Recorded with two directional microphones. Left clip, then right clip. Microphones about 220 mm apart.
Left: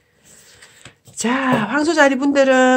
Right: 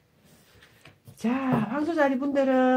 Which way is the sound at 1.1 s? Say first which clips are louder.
Left 10 dB; 40° left (ahead or behind).